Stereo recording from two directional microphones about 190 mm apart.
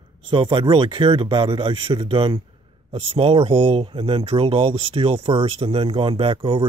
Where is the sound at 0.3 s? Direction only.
25° right (ahead or behind).